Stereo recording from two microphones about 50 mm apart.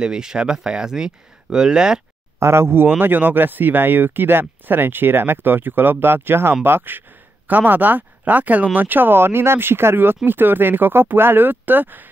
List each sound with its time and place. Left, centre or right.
0.0 s speech: centre
2.4 s speech: right